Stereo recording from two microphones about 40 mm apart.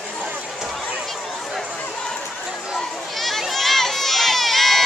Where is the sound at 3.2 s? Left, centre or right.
Centre.